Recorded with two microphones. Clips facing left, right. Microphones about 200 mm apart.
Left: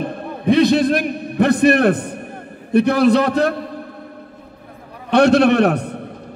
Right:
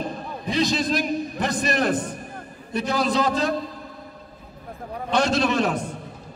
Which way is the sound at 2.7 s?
60° left (ahead or behind).